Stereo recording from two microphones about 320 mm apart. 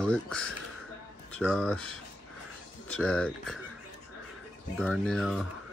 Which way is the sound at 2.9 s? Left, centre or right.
Centre.